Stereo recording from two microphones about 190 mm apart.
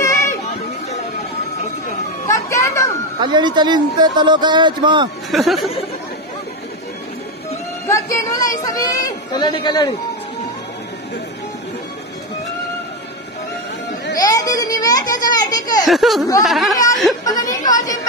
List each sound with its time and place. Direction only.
0.0 s children playing: 15° left (ahead or behind)
2.5 s children playing: 15° left (ahead or behind)
3.2 s speech: 25° right (ahead or behind)
5.3 s speech: centre (ahead or behind)
7.9 s speech: 15° left (ahead or behind)
14.1 s baby cry: 20° left (ahead or behind)
15.3 s children playing: 20° left (ahead or behind)
15.9 s speech: centre (ahead or behind)
17.2 s a sound: 20° left (ahead or behind)